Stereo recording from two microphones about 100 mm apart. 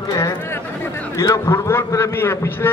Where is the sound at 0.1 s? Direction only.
30° left (ahead or behind).